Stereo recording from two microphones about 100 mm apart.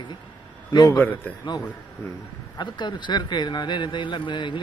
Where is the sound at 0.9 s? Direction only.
20° left (ahead or behind).